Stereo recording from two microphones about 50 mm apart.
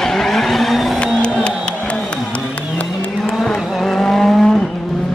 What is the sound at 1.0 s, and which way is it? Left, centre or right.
Music, left.